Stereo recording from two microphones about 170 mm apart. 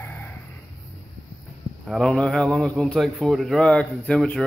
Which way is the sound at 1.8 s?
Centre (ahead or behind).